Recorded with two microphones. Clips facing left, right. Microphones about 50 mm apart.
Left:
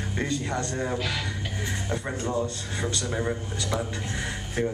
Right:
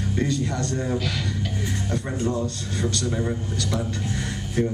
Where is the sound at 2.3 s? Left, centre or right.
Centre.